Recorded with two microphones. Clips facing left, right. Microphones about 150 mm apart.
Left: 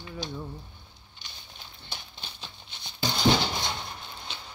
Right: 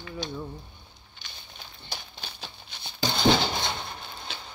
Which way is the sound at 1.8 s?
10° right (ahead or behind).